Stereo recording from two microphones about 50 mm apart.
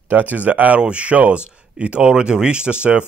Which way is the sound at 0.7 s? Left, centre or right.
Right.